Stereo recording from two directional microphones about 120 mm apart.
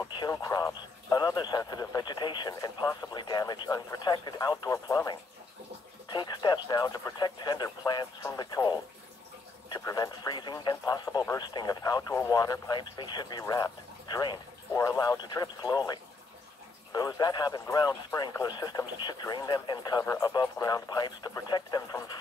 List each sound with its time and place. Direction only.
0.3 s speech: 30° left (ahead or behind)
2.9 s speech: 20° left (ahead or behind)
3.2 s speech: 35° left (ahead or behind)
9.8 s speech: 30° left (ahead or behind)